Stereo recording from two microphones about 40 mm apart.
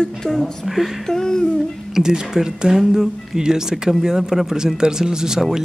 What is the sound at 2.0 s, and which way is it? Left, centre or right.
Speech, centre.